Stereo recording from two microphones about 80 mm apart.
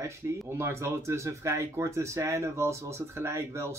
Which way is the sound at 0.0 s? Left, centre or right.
Right.